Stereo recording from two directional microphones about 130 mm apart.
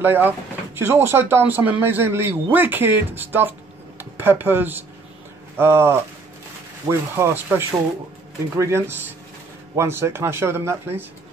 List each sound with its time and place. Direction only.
0.0 s a man's voice: 15° right (ahead or behind)